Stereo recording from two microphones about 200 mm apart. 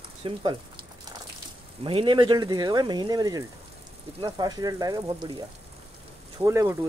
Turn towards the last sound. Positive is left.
turn(degrees=-15)  # may be behind; listen again after turning